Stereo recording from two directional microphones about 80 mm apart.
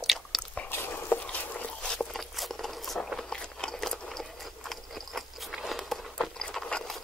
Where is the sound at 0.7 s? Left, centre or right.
Left.